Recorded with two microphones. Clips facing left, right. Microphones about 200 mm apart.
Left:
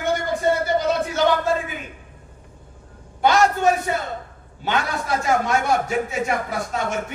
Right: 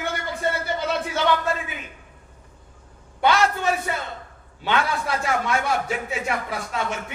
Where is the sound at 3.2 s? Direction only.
45° left (ahead or behind).